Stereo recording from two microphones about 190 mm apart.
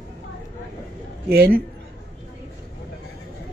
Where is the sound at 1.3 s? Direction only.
55° right (ahead or behind).